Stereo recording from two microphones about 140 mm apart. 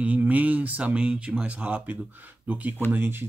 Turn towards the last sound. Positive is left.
turn(degrees=-15)  # may be behind; listen again after turning